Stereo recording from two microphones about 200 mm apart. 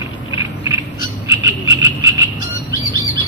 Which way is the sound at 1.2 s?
15° right (ahead or behind).